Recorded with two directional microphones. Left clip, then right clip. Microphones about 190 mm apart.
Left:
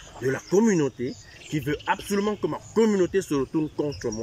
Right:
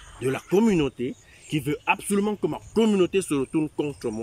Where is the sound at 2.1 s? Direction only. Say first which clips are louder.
Even; 25° right (ahead or behind).